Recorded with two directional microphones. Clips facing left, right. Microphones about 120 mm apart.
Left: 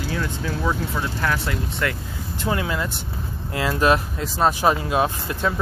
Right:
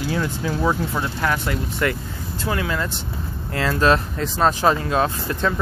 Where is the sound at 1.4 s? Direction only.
Centre (ahead or behind).